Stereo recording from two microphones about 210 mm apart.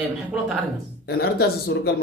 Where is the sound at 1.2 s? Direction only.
50° left (ahead or behind).